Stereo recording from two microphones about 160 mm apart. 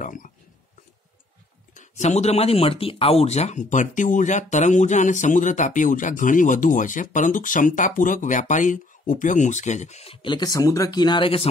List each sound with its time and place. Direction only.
0.0 s speech: 55° left (ahead or behind)
1.7 s speech: 50° left (ahead or behind); by 11.4 s 30° left (ahead or behind)